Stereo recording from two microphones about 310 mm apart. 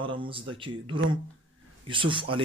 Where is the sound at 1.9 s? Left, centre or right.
Centre.